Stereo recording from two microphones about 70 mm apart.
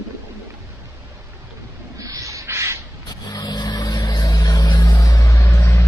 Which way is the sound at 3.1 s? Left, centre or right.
Left.